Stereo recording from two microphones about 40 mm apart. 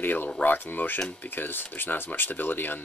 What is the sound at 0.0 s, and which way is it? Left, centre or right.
Speech, left.